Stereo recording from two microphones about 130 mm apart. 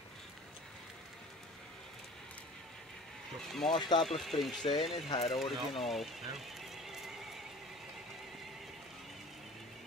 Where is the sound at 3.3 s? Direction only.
Centre (ahead or behind).